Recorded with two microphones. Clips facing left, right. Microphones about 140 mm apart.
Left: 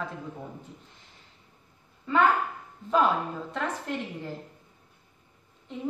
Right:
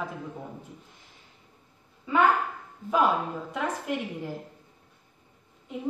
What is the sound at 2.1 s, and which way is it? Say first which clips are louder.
Speech: even; 5° right (ahead or behind).